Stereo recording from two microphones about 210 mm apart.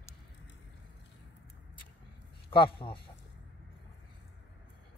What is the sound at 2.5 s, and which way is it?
Speech, 25° left (ahead or behind).